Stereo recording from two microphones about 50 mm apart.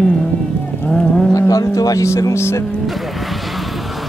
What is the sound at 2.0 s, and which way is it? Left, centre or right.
Music, left.